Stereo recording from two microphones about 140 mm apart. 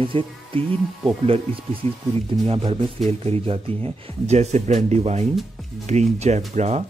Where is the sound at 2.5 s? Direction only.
40° right (ahead or behind).